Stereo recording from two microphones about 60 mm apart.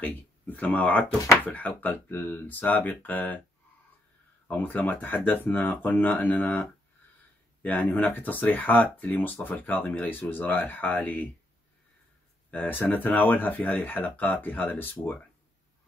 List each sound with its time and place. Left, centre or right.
0.0 s speech: left
4.5 s speech: left
12.4 s speech: left